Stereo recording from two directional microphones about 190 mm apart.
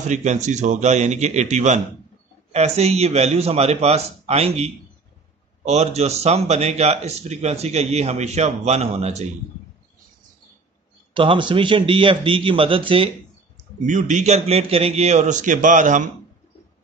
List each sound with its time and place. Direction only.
0.0 s a man's voice: 40° right (ahead or behind)
11.1 s a man's voice: 25° right (ahead or behind)
13.8 s a man's voice: 40° right (ahead or behind)